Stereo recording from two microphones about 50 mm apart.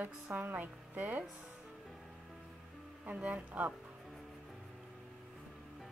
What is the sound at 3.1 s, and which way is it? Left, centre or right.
Speech, right.